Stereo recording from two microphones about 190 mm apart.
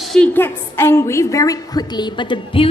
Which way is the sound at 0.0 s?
5° left (ahead or behind).